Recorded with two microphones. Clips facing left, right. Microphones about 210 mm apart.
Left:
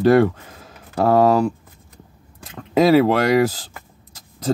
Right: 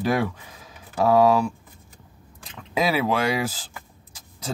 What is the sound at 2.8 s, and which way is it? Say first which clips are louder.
Speech: left 10 dB; 40° left (ahead or behind).